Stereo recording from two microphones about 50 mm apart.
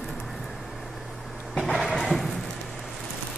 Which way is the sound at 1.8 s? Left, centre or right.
Centre.